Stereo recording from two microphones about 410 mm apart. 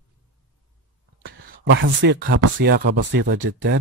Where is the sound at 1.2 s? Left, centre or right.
Right.